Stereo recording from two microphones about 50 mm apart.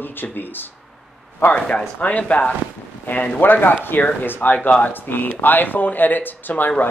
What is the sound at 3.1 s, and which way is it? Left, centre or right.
Speech, left.